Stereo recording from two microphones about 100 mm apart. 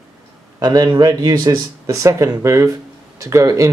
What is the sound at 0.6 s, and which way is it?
Speech, 35° right (ahead or behind).